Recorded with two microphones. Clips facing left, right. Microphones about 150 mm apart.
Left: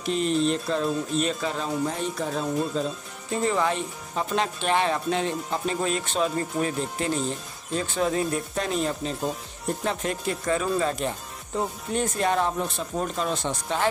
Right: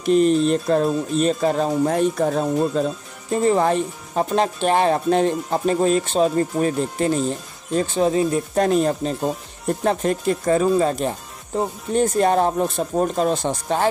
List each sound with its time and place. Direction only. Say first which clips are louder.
0.0 s speech: right 8 dB; 45° right (ahead or behind)
3.4 s speech: right 7 dB; 40° right (ahead or behind)
8.5 s speech: right 11 dB; 45° right (ahead or behind)